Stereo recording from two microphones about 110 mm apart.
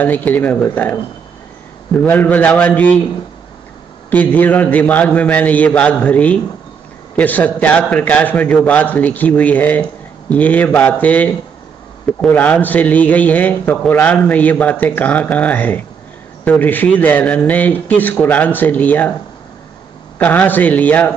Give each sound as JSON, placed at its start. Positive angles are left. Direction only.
{"t": 0.0, "sound": "a man's voice", "side_deg": 15}
{"t": 2.0, "sound": "a man's voice", "side_deg": 15}
{"t": 4.1, "sound": "a man's voice", "side_deg": 15}
{"t": 20.2, "sound": "a man's voice", "side_deg": 15}